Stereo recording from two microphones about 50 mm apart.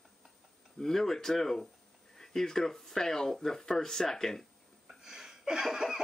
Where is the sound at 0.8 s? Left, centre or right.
Centre.